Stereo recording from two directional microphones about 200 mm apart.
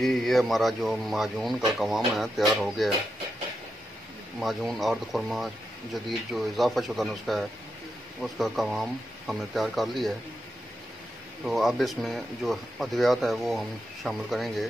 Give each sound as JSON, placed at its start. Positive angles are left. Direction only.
{"t": 0.0, "sound": "speech", "side_deg": 0}
{"t": 4.4, "sound": "speech", "side_deg": 0}
{"t": 11.4, "sound": "speech", "side_deg": 0}